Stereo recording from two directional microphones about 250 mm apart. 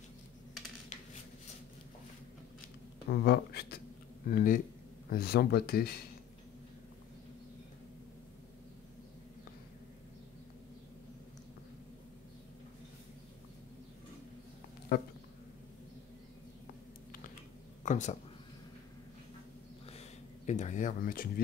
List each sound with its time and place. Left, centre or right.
3.1 s speech: left
14.9 s speech: left
17.8 s speech: left
19.9 s a sound: left